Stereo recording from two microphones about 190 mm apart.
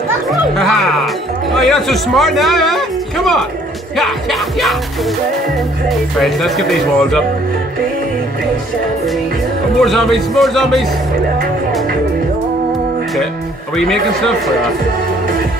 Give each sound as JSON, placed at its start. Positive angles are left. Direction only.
{"t": 0.3, "sound": "music", "side_deg": 0}
{"t": 3.9, "sound": "speech", "side_deg": 0}
{"t": 5.9, "sound": "speech", "side_deg": 0}
{"t": 9.8, "sound": "speech", "side_deg": 0}
{"t": 13.7, "sound": "speech", "side_deg": 0}